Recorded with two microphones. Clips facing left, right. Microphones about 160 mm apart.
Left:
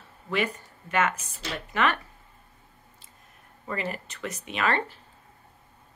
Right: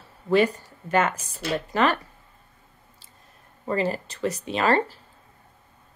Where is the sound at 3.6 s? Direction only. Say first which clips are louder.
Right 7 dB; 35° right (ahead or behind).